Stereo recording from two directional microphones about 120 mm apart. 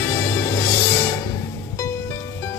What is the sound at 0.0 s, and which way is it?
Music, 20° left (ahead or behind).